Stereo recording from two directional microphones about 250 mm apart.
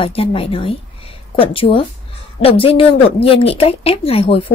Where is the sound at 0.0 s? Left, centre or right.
Left.